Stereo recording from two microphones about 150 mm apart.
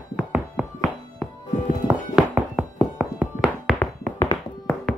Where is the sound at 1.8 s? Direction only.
5° right (ahead or behind).